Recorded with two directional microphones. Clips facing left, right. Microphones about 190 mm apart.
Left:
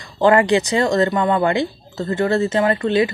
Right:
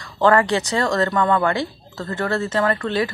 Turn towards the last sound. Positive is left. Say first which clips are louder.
# left 4 dB
turn(degrees=20)  # may be behind; listen again after turning